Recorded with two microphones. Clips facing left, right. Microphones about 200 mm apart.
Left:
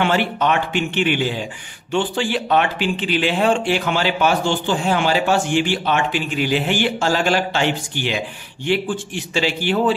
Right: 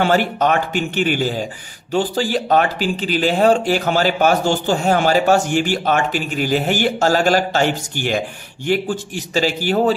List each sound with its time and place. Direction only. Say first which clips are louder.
0.0 s speech: right 2 dB; 40° right (ahead or behind)